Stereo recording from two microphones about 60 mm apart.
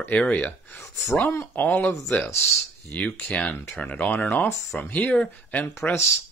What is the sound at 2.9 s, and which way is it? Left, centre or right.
Speech, left.